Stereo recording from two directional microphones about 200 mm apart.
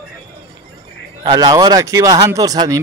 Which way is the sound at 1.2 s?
20° right (ahead or behind).